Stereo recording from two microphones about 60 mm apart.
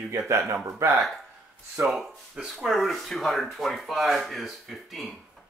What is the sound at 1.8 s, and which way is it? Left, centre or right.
Speech, centre.